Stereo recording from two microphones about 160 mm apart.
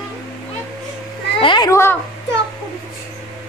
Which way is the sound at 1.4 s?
30° left (ahead or behind).